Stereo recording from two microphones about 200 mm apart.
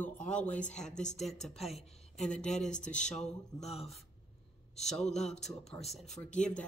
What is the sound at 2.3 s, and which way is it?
Speech, 5° left (ahead or behind).